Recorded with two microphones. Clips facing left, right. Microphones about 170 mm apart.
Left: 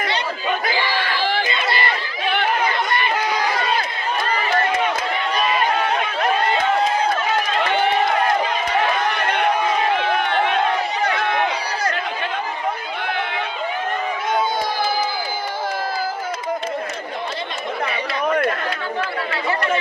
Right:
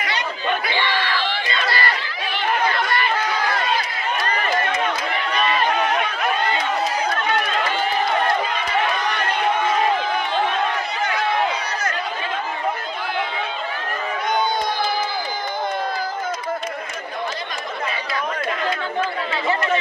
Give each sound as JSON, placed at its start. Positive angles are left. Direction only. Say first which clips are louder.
{"t": 1.5, "sound": "chatter", "louder": "left 1 dB", "side_deg": 20}
{"t": 2.9, "sound": "chatter", "louder": "left 1 dB", "side_deg": 10}